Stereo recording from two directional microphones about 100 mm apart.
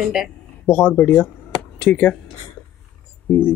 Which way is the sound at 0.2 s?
5° right (ahead or behind).